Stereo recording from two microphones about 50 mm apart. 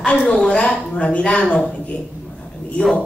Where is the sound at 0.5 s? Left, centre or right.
Centre.